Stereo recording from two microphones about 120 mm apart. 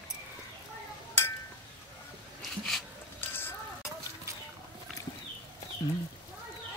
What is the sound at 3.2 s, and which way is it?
Music, 20° left (ahead or behind).